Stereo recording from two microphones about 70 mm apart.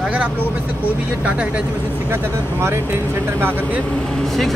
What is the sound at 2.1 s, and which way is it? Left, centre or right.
Speech, right.